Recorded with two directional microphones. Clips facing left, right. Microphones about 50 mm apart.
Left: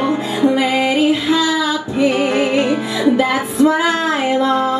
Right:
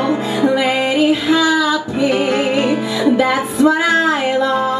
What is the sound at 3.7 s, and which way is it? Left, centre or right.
Music, left.